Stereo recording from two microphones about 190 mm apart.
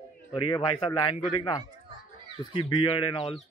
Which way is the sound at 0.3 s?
25° left (ahead or behind).